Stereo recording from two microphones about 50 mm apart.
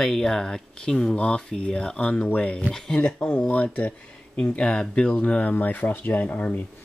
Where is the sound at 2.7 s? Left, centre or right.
Centre.